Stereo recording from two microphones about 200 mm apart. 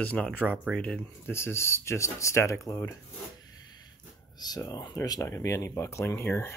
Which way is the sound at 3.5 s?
20° left (ahead or behind).